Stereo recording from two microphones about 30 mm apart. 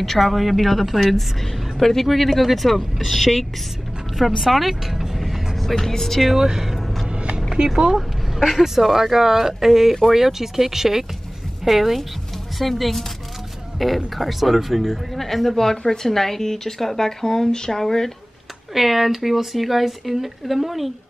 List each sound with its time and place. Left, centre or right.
0.2 s speech: centre
1.8 s speech: centre
5.6 s speech: centre
6.3 s speech: centre
7.1 s a sound: right
7.5 s speech: right
8.4 s speech: centre
15.1 s speech: centre
15.5 s speech: centre
18.7 s speech: centre